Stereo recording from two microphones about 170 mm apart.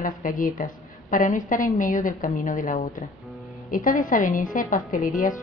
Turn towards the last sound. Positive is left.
turn(degrees=50)  # may be behind; listen again after turning